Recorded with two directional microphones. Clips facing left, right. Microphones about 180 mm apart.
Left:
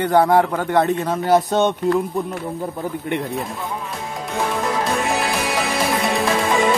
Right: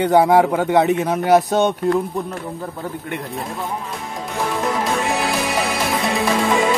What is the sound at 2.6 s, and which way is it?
Speech, 20° left (ahead or behind).